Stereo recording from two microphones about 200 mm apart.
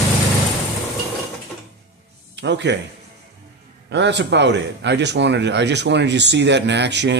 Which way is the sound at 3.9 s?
60° right (ahead or behind).